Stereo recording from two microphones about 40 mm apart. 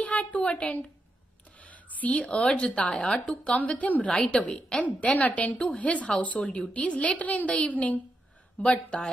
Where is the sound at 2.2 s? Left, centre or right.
Left.